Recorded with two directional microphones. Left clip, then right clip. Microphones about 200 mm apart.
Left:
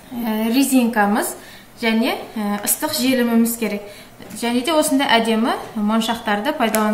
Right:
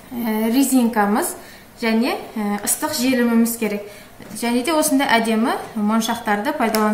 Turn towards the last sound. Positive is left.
turn(degrees=0)  # may be behind; listen again after turning